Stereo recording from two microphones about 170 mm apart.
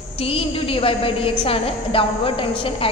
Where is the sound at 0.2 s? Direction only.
35° left (ahead or behind).